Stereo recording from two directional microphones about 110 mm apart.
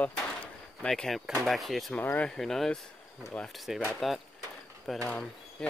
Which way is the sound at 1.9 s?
15° left (ahead or behind).